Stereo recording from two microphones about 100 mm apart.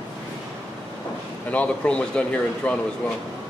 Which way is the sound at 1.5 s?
10° left (ahead or behind).